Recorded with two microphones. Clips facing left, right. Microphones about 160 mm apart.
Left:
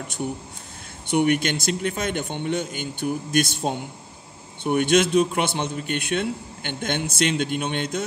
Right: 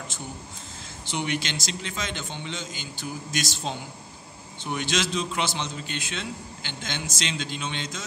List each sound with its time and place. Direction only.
1.0 s a man's voice: 55° left (ahead or behind)